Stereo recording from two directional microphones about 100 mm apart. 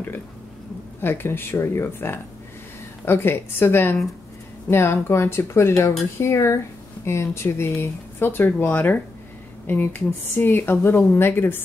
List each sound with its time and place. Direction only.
1.0 s speech: 20° left (ahead or behind)